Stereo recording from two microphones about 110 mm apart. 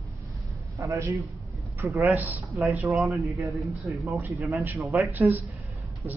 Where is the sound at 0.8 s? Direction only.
30° right (ahead or behind).